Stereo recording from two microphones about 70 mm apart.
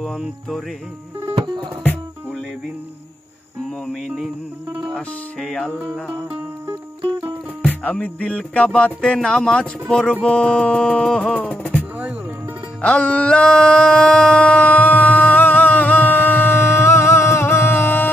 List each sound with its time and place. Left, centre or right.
3.8 s music: centre
7.6 s music: centre
12.8 s a sound: centre